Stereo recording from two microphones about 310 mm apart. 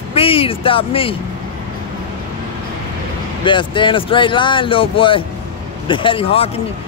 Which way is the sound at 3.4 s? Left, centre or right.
Centre.